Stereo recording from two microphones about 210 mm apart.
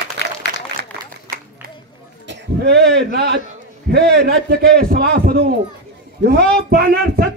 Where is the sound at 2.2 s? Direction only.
55° right (ahead or behind).